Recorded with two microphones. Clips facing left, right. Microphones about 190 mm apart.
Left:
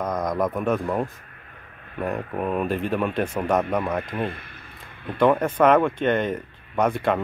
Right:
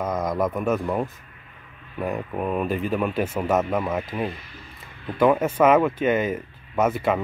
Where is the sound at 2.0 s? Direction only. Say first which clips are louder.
Even; centre (ahead or behind).